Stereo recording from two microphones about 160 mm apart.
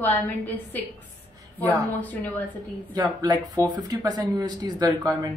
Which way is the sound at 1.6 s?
20° right (ahead or behind).